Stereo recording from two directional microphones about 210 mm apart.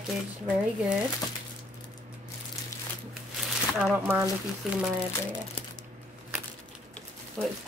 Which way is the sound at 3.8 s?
5° right (ahead or behind).